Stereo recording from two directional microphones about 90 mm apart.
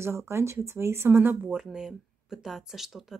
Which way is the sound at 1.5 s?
5° right (ahead or behind).